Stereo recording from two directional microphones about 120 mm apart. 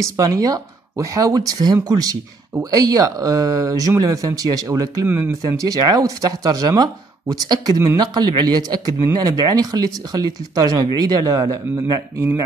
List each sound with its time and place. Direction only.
0.2 s speech: 30° right (ahead or behind)
5.0 s speech: 15° right (ahead or behind)
5.5 s speech: 30° right (ahead or behind)